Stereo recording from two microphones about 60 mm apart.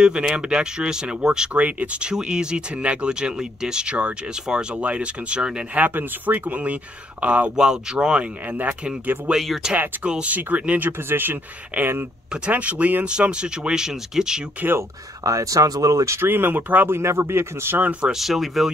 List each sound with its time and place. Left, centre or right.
0.0 s speech: centre
1.5 s speech: right
2.0 s speech: centre
5.9 s speech: right
9.3 s speech: centre
10.0 s speech: centre
10.3 s speech: right
10.9 s speech: right
12.4 s speech: right
14.8 s speech: right
16.2 s speech: right
16.9 s speech: right
18.1 s speech: centre